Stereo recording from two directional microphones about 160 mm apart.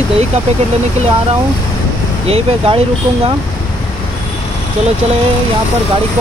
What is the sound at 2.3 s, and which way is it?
Speech, 40° right (ahead or behind).